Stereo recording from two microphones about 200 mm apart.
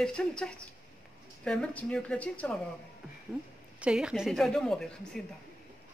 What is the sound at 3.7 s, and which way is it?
Speech, 5° right (ahead or behind).